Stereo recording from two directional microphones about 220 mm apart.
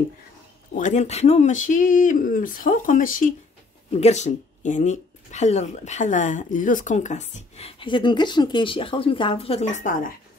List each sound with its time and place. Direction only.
0.7 s speech: 35° left (ahead or behind)